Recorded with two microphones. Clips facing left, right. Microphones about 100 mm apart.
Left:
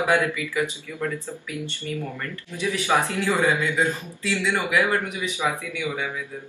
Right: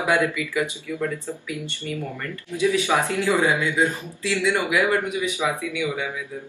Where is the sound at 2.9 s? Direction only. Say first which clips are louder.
Right 1 dB; 20° right (ahead or behind).